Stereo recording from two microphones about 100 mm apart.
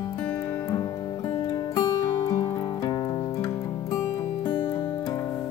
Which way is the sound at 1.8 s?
55° left (ahead or behind).